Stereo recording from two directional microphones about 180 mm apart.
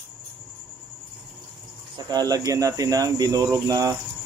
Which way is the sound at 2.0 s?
25° right (ahead or behind).